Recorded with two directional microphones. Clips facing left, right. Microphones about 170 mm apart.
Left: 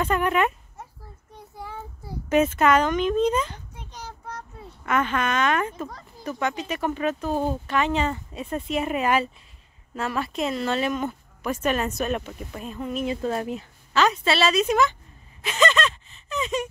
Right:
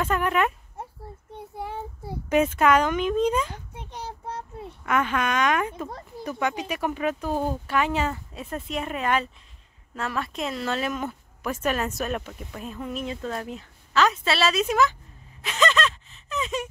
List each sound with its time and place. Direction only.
0.0 s speech: centre (ahead or behind)
2.2 s speech: 10° right (ahead or behind)
3.7 s child singing: 60° right (ahead or behind)
4.0 s child singing: 25° right (ahead or behind)
4.8 s speech: 5° right (ahead or behind)
13.1 s speech: 20° left (ahead or behind)
13.5 s speech: 5° left (ahead or behind)
15.4 s gasp: centre (ahead or behind)